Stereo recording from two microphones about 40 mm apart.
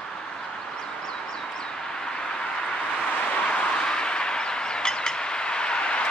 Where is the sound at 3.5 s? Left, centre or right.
Left.